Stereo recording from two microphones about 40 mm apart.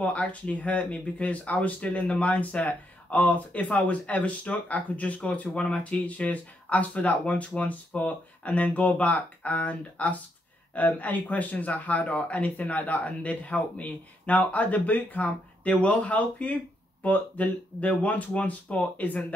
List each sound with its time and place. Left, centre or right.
0.0 s speech: left